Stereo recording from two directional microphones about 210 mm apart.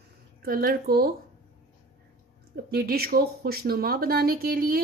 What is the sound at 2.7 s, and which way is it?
Speech, 45° right (ahead or behind).